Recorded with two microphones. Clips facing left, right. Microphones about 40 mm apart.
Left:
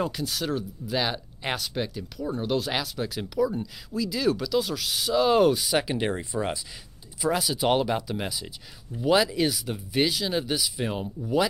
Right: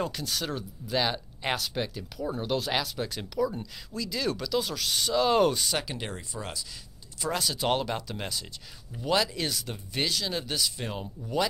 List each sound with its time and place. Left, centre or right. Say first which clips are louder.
0.0 s speech: left 3 dB; centre
5.8 s speech: left 8 dB; centre
7.2 s speech: left 4 dB; centre